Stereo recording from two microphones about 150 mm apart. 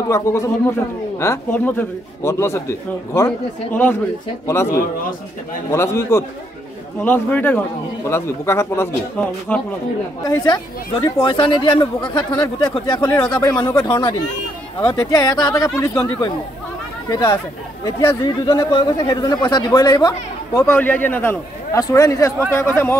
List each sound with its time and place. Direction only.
0.1 s a man's voice: 20° left (ahead or behind)
10.2 s speech: 25° left (ahead or behind)
13.0 s a man's voice: 10° left (ahead or behind)
13.3 s a man's voice: 30° left (ahead or behind)